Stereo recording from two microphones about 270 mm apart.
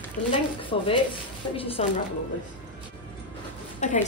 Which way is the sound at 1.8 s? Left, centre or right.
Left.